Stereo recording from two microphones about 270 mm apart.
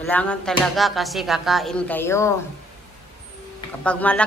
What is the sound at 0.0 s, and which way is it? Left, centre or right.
Speech, centre.